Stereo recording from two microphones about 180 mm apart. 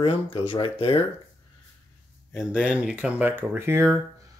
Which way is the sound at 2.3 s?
5° right (ahead or behind).